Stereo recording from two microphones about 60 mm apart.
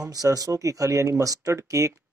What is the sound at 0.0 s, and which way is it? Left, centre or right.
Speech, right.